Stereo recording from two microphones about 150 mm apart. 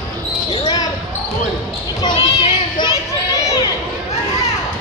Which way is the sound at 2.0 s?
30° left (ahead or behind).